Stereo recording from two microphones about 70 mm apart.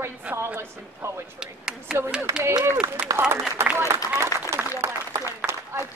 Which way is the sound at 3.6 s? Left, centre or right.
Right.